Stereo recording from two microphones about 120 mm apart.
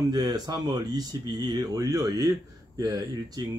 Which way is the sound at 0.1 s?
35° right (ahead or behind).